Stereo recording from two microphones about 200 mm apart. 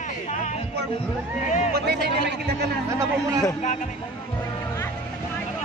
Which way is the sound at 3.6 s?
35° left (ahead or behind).